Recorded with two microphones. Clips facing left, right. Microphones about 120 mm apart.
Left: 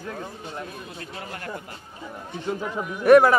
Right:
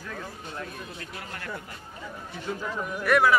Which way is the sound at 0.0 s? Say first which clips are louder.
Left 4 dB; 25° left (ahead or behind).